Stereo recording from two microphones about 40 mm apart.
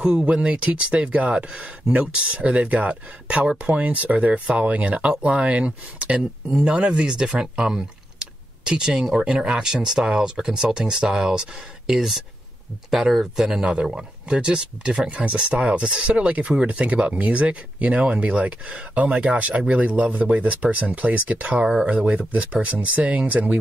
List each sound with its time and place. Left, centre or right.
0.2 s speech: right; by 12.2 s centre
13.9 s speech: right
15.0 s speech: right